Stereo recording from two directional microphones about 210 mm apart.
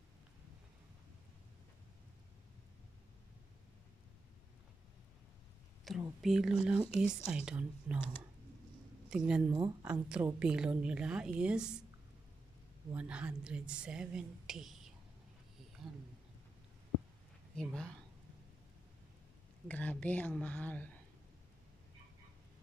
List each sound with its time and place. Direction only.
5.9 s speech: centre (ahead or behind)
9.1 s speech: 5° right (ahead or behind)
9.5 s speech: 20° right (ahead or behind)
9.8 s speech: 5° right (ahead or behind)
12.9 s speech: 5° right (ahead or behind)
17.6 s speech: 5° left (ahead or behind)
19.7 s a woman's voice: 5° left (ahead or behind)